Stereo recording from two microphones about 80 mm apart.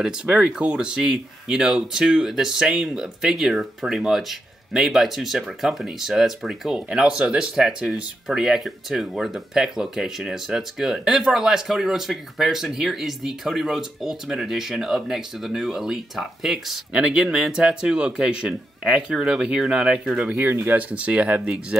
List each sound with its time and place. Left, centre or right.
0.0 s speech: centre
20.3 s speech: right
20.6 s speech: centre